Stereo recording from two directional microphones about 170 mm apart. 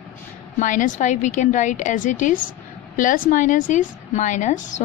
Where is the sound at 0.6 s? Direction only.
50° left (ahead or behind).